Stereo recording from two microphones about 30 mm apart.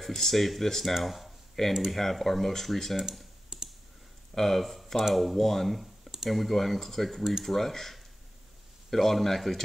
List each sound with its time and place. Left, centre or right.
0.0 s speech: centre
3.5 s clicking: centre
4.4 s speech: centre